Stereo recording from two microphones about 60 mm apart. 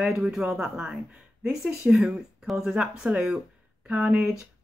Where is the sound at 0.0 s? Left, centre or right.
Centre.